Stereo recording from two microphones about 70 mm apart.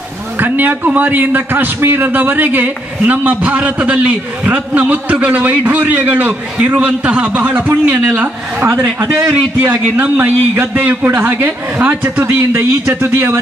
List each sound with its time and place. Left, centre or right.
0.4 s a man's voice: right
11.1 s a man's voice: right